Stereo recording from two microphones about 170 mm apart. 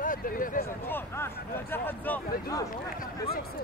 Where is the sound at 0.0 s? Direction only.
55° left (ahead or behind).